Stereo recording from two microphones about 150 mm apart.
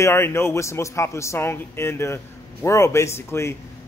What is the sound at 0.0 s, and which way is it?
A man's voice, 15° left (ahead or behind).